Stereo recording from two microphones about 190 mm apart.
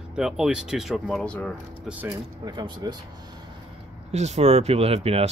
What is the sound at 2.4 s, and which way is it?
Speech, 25° right (ahead or behind).